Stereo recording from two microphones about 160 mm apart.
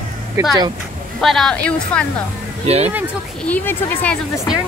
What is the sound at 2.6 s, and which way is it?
Speech, 40° right (ahead or behind).